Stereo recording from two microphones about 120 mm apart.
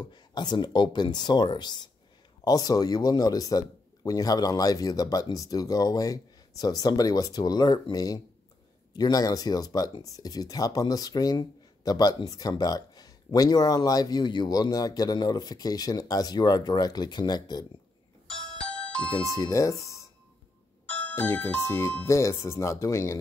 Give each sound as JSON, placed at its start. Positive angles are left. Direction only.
{"t": 0.0, "sound": "speech", "side_deg": 35}
{"t": 18.3, "sound": "music", "side_deg": 5}
{"t": 19.3, "sound": "speech", "side_deg": 25}
{"t": 20.8, "sound": "speech", "side_deg": 15}